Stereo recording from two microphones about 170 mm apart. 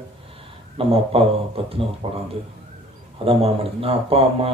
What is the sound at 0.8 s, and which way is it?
A man's voice, 35° right (ahead or behind).